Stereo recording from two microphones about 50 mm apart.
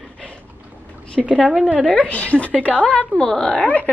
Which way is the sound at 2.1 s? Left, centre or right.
Left.